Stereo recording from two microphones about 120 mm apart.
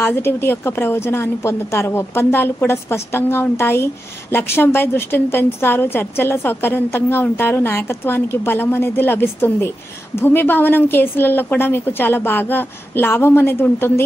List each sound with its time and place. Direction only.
0.0 s a woman's voice: 20° left (ahead or behind)